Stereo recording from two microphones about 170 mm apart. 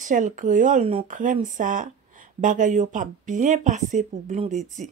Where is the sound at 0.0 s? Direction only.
45° right (ahead or behind).